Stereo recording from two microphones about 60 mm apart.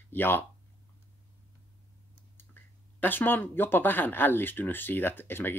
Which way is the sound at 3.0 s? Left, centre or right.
Left.